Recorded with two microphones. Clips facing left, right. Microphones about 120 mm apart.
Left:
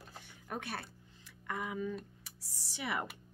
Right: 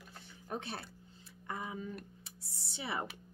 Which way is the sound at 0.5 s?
25° right (ahead or behind).